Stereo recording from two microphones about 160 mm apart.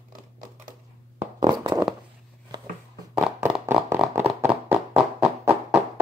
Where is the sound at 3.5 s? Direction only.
10° right (ahead or behind).